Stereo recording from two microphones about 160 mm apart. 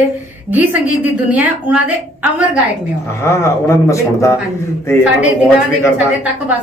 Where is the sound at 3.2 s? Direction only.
15° left (ahead or behind).